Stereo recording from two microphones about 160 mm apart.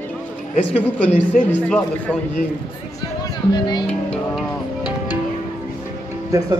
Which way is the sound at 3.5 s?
25° left (ahead or behind).